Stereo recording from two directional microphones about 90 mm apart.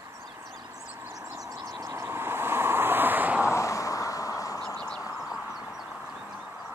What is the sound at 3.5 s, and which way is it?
Vehicle, 35° left (ahead or behind).